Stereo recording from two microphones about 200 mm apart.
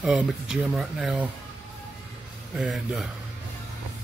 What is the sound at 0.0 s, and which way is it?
Speech, centre (ahead or behind).